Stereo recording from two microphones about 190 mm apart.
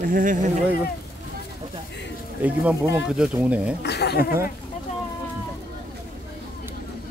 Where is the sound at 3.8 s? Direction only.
60° left (ahead or behind).